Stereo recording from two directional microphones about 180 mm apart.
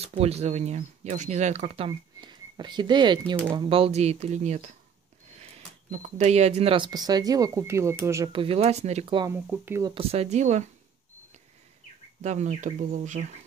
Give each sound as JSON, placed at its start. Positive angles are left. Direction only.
{"t": 0.0, "sound": "speech", "side_deg": -35}
{"t": 8.3, "sound": "speech", "side_deg": -30}
{"t": 9.3, "sound": "speech", "side_deg": -10}
{"t": 9.9, "sound": "speech", "side_deg": -35}
{"t": 12.2, "sound": "speech", "side_deg": -40}